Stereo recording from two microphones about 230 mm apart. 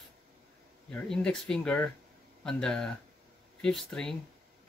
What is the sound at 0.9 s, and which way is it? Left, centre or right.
Speech, centre.